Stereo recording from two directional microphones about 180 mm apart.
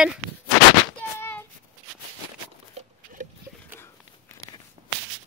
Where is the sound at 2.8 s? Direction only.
35° right (ahead or behind).